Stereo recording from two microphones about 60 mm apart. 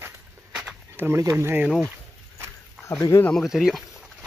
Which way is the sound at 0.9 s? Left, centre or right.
Right.